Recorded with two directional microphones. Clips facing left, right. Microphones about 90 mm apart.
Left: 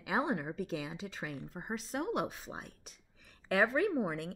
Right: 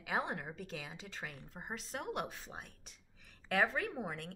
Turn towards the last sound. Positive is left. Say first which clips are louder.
# left 8 dB
turn(degrees=10)  # may be behind; listen again after turning